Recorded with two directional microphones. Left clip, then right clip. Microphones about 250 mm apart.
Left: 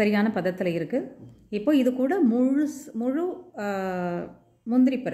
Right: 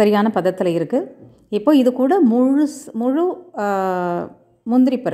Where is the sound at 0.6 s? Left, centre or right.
Right.